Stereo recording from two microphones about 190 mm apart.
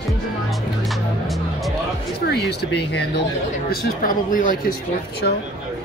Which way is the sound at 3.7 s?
45° left (ahead or behind).